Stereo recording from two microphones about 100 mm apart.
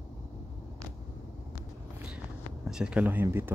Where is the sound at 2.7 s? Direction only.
5° right (ahead or behind).